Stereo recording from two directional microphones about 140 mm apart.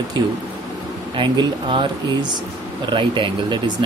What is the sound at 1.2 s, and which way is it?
Speech, 35° right (ahead or behind).